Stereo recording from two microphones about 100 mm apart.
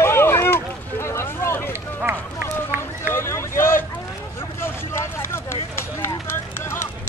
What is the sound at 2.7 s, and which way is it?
Run, 20° right (ahead or behind).